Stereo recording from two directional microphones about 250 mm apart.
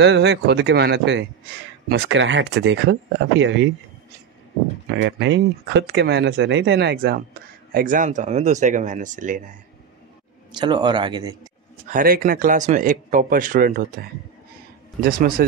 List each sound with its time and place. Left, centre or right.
0.0 s speech: right
5.0 s speech: right
10.5 s speech: centre
11.9 s speech: right